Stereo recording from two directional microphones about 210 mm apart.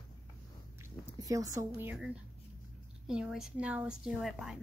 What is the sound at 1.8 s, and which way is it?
Speech, 10° right (ahead or behind).